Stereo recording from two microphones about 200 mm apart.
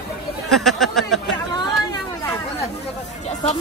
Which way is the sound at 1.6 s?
20° left (ahead or behind).